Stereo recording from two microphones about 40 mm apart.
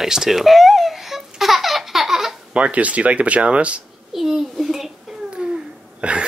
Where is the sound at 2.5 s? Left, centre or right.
Right.